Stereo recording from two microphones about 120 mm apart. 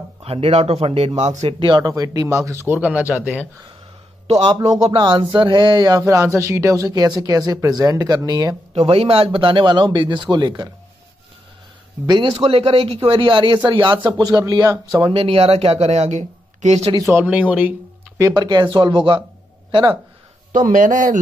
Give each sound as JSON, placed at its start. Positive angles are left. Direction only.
{"t": 0.2, "sound": "speech", "side_deg": -55}
{"t": 1.6, "sound": "speech", "side_deg": -40}
{"t": 1.9, "sound": "speech", "side_deg": -30}
{"t": 2.8, "sound": "speech", "side_deg": -15}
{"t": 4.3, "sound": "speech", "side_deg": -60}
{"t": 4.9, "sound": "speech", "side_deg": -35}
{"t": 8.7, "sound": "speech", "side_deg": -55}
{"t": 12.4, "sound": "speech", "side_deg": -55}
{"t": 14.1, "sound": "speech", "side_deg": -35}
{"t": 15.0, "sound": "speech", "side_deg": -45}
{"t": 17.1, "sound": "speech", "side_deg": -10}
{"t": 18.2, "sound": "speech", "side_deg": -35}
{"t": 20.5, "sound": "speech", "side_deg": -90}